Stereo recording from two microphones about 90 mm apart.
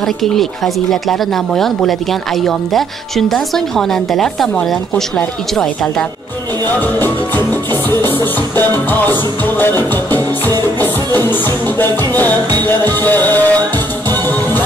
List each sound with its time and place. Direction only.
0.0 s speech: 5° left (ahead or behind)
6.8 s music: 20° left (ahead or behind)